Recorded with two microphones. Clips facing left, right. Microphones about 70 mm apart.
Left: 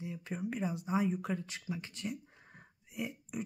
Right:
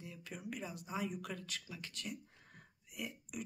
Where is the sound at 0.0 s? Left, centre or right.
Left.